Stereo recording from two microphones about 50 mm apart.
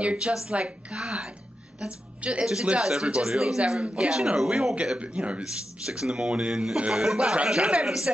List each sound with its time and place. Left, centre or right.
0.0 s a woman's voice: right